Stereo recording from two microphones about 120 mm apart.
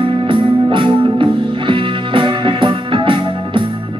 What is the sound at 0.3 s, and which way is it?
Music, 45° right (ahead or behind).